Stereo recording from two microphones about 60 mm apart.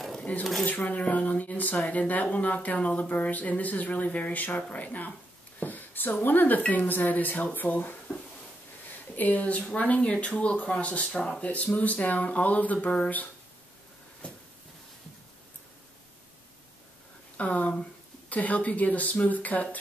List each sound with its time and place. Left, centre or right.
0.1 s a sound: centre
0.7 s speech: left
9.1 s speech: left
11.4 s speech: left
17.4 s speech: left